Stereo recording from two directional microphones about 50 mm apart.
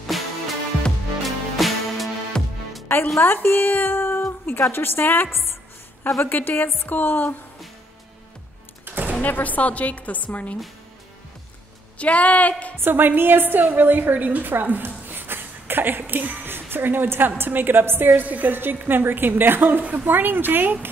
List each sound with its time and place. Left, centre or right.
0.1 s music: centre
2.3 s music: centre
3.2 s a woman's voice: left
8.8 s a sound: right
9.2 s a woman's voice: left
12.0 s speech: left
12.7 s a woman's voice: right
15.0 s a sound: right
17.4 s a woman's voice: right